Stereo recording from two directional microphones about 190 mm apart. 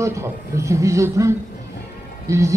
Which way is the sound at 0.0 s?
15° right (ahead or behind).